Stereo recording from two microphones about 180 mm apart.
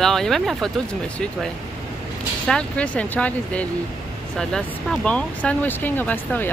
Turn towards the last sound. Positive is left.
turn(degrees=10)  # may be behind; listen again after turning